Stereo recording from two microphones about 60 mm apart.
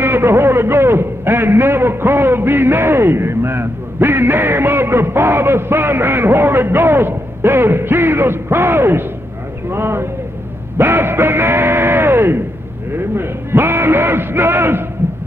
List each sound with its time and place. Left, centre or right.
0.0 s a man's voice: right